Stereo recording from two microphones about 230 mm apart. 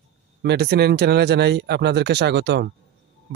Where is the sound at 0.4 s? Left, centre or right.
Right.